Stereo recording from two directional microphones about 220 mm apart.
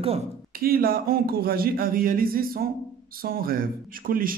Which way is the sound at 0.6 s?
40° right (ahead or behind).